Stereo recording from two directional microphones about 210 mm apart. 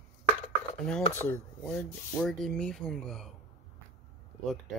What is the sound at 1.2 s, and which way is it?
Speech, 10° left (ahead or behind).